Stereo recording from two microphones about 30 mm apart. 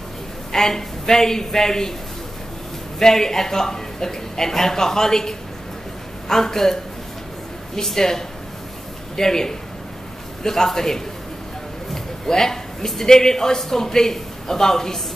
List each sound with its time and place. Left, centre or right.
0.5 s speech: centre
3.0 s a man's voice: centre